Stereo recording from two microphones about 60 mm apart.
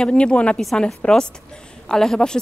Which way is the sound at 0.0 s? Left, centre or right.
Centre.